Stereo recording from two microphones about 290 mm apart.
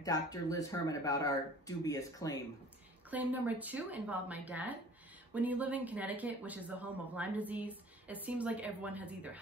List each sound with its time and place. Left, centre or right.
0.0 s speech: centre
3.1 s speech: centre